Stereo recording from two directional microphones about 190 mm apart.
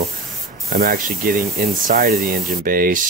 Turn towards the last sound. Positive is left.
turn(degrees=-50)  # may be behind; listen again after turning